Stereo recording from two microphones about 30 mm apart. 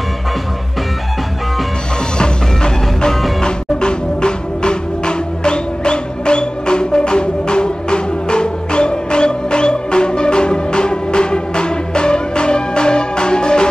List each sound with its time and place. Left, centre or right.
2.1 s music: left